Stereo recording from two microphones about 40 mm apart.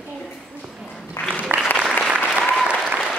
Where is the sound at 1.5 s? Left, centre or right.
Right.